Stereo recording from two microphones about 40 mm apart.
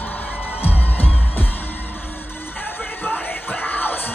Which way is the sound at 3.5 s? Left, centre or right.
Left.